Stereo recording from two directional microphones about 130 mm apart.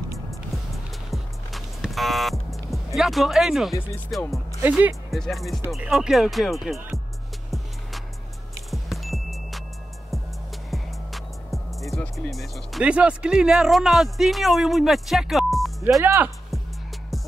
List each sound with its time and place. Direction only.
1.1 s music: centre (ahead or behind)
4.1 s speech: centre (ahead or behind)
4.6 s speech: 10° right (ahead or behind)
5.1 s speech: centre (ahead or behind)
8.6 s music: centre (ahead or behind)
10.7 s music: centre (ahead or behind)
12.8 s speech: 10° right (ahead or behind)
16.0 s speech: 15° right (ahead or behind)